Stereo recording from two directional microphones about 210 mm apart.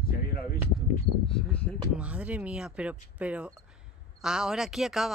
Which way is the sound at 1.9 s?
5° right (ahead or behind).